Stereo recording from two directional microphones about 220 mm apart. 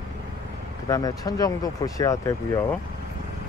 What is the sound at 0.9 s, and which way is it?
Speech, 15° left (ahead or behind).